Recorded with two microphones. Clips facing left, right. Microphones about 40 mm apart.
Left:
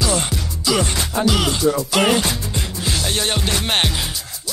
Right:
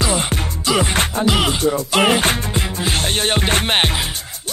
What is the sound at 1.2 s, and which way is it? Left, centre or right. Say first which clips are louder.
Music: left 1 dB; right.